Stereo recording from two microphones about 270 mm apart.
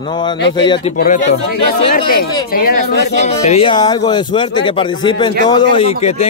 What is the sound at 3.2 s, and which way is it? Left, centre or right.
Speech, left.